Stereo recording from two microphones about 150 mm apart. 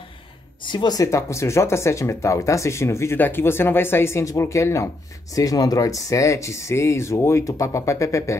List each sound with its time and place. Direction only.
0.7 s speech: 30° left (ahead or behind)